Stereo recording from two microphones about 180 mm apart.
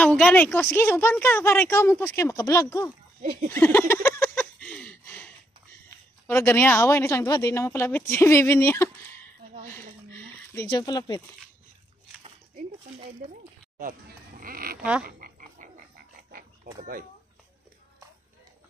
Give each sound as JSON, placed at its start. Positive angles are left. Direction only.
{"t": 0.0, "sound": "speech", "side_deg": 5}
{"t": 3.2, "sound": "speech", "side_deg": -55}
{"t": 3.5, "sound": "speech", "side_deg": 10}
{"t": 4.2, "sound": "a sound", "side_deg": 10}
{"t": 6.2, "sound": "speech", "side_deg": 10}
{"t": 9.7, "sound": "a sound", "side_deg": 10}
{"t": 12.2, "sound": "a sound", "side_deg": -35}
{"t": 14.4, "sound": "speech", "side_deg": -55}
{"t": 15.0, "sound": "frog", "side_deg": -50}